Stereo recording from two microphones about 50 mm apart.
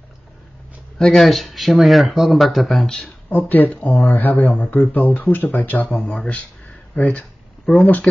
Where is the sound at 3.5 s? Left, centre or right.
Left.